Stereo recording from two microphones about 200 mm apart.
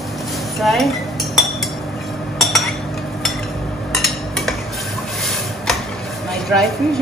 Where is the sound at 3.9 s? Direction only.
Centre (ahead or behind).